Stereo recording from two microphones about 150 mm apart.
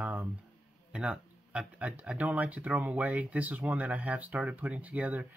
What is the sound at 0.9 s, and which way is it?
Speech, 5° right (ahead or behind).